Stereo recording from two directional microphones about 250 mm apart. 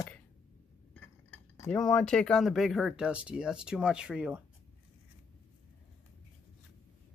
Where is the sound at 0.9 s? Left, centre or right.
Centre.